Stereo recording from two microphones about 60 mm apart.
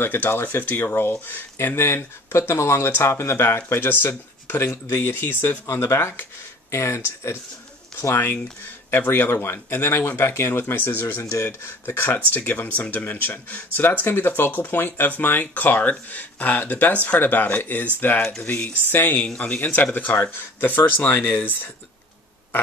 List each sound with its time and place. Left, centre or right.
0.0 s speech: left
2.3 s speech: left
4.6 s speech: left
5.7 s speech: left
8.9 s speech: left
10.6 s speech: left
11.2 s speech: left
19.1 s speech: centre